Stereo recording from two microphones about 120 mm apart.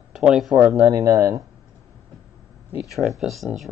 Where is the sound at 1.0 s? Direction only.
25° right (ahead or behind).